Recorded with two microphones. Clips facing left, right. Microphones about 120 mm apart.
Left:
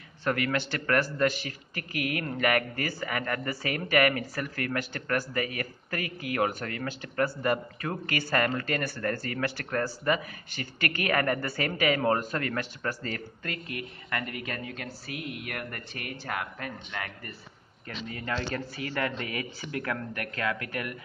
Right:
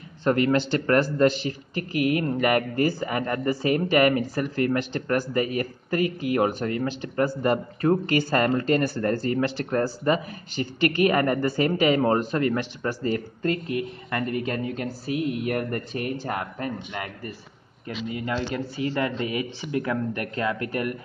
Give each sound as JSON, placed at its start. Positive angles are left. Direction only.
{"t": 0.2, "sound": "speech", "side_deg": -30}